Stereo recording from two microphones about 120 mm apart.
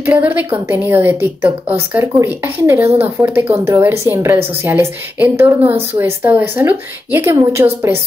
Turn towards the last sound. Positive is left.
turn(degrees=-20)  # may be behind; listen again after turning